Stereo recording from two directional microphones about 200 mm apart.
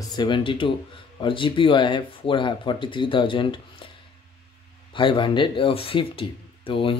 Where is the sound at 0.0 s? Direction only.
20° left (ahead or behind).